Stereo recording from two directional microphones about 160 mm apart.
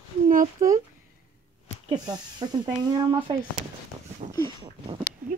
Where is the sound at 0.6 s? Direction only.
55° right (ahead or behind).